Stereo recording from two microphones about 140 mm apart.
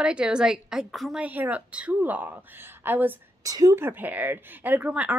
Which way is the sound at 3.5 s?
25° right (ahead or behind).